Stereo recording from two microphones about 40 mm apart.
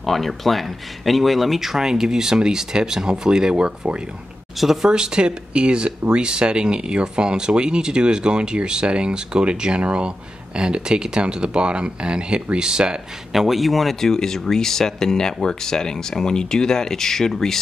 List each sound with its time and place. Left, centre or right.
0.0 s speech: centre; by 4.0 s right
4.6 s speech: centre
4.9 s speech: right
13.3 s speech: centre
14.0 s speech: centre